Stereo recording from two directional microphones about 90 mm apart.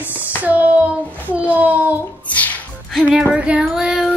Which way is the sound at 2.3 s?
15° left (ahead or behind).